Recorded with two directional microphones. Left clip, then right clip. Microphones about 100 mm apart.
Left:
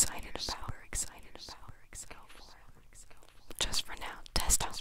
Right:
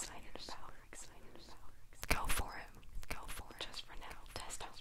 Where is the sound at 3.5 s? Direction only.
30° left (ahead or behind).